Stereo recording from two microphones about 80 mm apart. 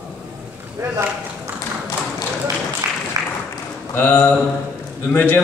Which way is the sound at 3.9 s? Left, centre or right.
Left.